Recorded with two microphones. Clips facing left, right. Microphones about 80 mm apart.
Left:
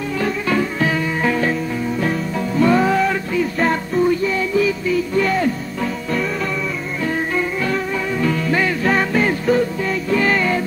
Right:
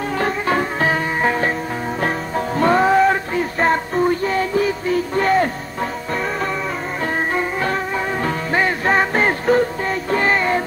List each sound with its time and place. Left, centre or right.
0.2 s music: right
7.3 s music: right